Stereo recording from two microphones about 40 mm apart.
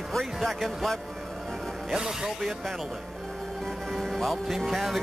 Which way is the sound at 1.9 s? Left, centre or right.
Centre.